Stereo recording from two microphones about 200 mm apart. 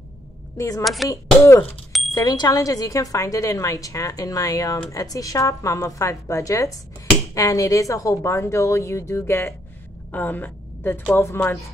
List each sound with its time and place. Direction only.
0.6 s a woman's voice: 15° left (ahead or behind)
1.9 s a sound: centre (ahead or behind)
2.1 s a woman's voice: 20° left (ahead or behind)